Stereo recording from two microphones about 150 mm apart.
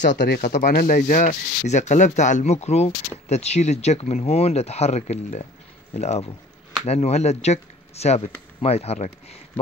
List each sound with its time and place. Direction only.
0.3 s speech: 70° left (ahead or behind); by 9.4 s 45° left (ahead or behind)